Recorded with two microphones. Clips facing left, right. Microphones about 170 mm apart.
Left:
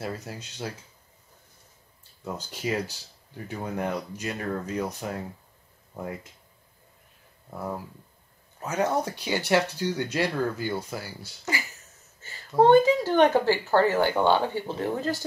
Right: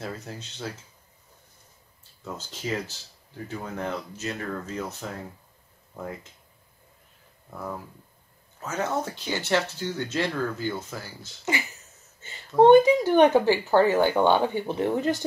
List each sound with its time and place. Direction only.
0.0 s speech: 10° left (ahead or behind)
2.2 s speech: 10° left (ahead or behind)
7.5 s speech: 10° left (ahead or behind)
12.2 s speech: 20° right (ahead or behind)